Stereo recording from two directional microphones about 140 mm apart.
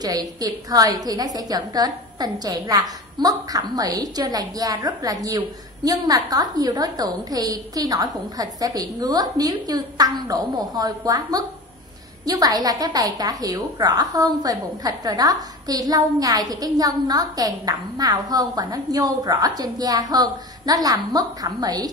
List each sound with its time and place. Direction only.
0.0 s a woman's voice: 30° right (ahead or behind)